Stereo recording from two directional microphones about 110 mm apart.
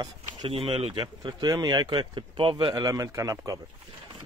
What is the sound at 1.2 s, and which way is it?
Speech, 35° right (ahead or behind).